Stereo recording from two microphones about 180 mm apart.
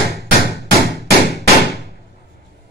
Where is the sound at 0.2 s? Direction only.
65° left (ahead or behind).